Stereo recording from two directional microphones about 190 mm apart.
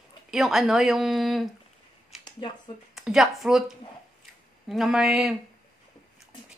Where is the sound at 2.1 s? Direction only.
Centre (ahead or behind).